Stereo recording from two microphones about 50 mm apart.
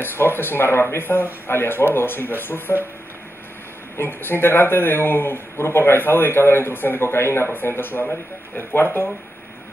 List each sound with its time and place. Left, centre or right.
0.0 s speech: left
3.9 s speech: left